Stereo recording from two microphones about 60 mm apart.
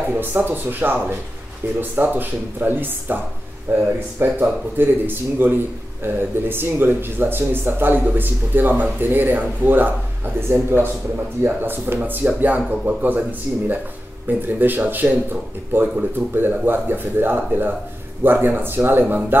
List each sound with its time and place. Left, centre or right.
0.1 s speech: right
14.2 s speech: right